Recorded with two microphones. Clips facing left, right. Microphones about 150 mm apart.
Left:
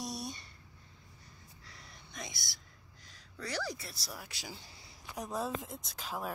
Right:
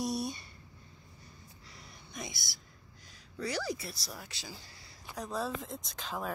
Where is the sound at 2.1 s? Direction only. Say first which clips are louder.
Right 3 dB; 5° right (ahead or behind).